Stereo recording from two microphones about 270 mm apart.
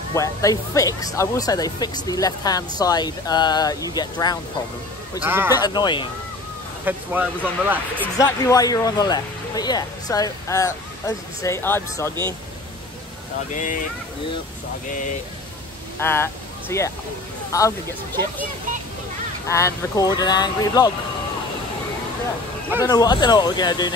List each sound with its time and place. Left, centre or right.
0.1 s speech: centre
5.2 s speech: centre
5.6 s speech: centre
6.8 s speech: centre
8.0 s speech: centre
13.5 s speech: left
16.0 s speech: centre
19.4 s speech: centre
22.8 s speech: centre